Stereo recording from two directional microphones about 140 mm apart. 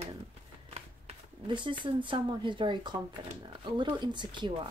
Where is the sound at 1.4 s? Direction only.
35° right (ahead or behind).